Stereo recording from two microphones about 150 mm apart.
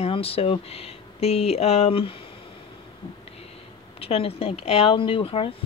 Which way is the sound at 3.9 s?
40° left (ahead or behind).